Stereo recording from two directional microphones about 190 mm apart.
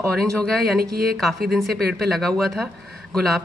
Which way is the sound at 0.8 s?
55° right (ahead or behind).